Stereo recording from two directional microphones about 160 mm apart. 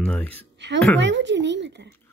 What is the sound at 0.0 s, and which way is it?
Speech, 10° left (ahead or behind).